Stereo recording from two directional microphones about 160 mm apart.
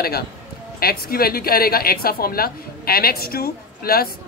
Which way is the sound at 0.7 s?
70° left (ahead or behind).